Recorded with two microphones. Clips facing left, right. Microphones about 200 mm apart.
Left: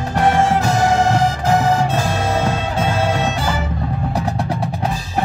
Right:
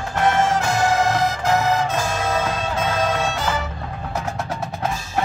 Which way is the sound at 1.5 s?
35° left (ahead or behind).